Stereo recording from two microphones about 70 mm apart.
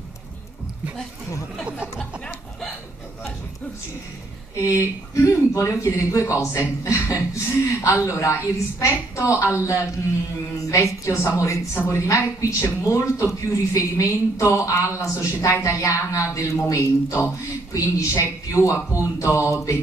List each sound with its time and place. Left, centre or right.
4.6 s speech: left
10.7 s speech: left